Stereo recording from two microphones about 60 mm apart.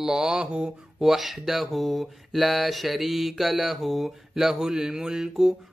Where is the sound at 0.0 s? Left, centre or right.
Centre.